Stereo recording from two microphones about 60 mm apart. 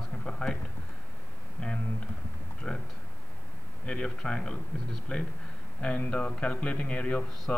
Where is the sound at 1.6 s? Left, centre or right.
Centre.